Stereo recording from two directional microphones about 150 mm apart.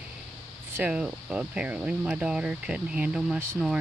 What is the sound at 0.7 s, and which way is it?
Speech, 10° right (ahead or behind).